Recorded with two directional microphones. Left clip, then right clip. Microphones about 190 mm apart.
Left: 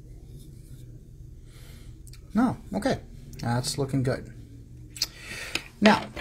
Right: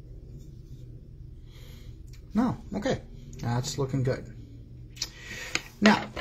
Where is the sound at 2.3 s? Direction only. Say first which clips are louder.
Left 3 dB; 25° left (ahead or behind).